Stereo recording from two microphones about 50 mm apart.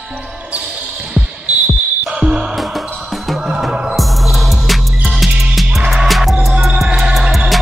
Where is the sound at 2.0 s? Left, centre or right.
Centre.